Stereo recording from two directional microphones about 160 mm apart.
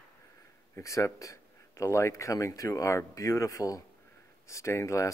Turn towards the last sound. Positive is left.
turn(degrees=20)  # may be behind; listen again after turning